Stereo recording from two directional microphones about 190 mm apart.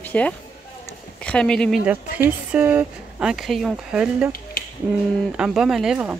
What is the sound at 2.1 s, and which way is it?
Speech, 10° right (ahead or behind).